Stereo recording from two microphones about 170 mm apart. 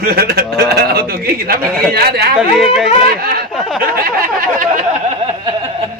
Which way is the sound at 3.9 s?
55° right (ahead or behind).